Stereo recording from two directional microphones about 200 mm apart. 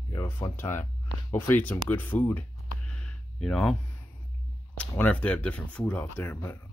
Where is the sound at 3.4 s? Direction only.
Centre (ahead or behind).